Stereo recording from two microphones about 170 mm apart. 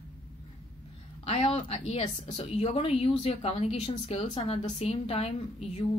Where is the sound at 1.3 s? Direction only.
35° left (ahead or behind).